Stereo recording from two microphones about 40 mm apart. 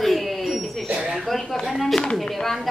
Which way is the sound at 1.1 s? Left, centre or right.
Centre.